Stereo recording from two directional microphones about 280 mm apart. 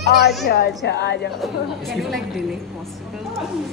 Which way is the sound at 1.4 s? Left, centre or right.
Centre.